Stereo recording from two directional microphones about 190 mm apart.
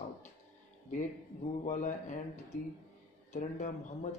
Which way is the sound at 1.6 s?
35° left (ahead or behind).